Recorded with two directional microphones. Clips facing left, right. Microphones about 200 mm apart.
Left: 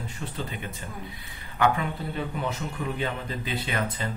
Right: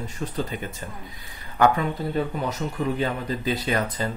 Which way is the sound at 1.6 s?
40° right (ahead or behind).